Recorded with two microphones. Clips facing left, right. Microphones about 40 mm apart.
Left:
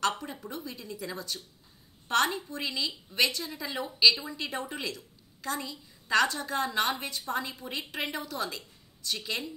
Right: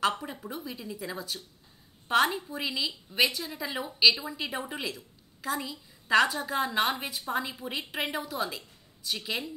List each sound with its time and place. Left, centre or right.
0.0 s a woman's voice: centre